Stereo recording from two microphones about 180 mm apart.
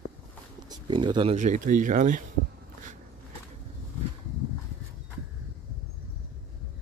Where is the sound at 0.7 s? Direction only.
25° right (ahead or behind).